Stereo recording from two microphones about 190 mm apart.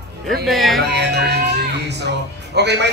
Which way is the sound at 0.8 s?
60° right (ahead or behind).